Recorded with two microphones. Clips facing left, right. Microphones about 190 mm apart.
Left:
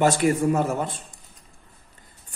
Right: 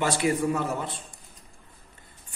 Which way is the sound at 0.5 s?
45° left (ahead or behind).